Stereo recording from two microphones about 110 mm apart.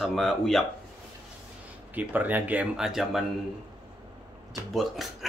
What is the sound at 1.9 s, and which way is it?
Speech, 15° right (ahead or behind).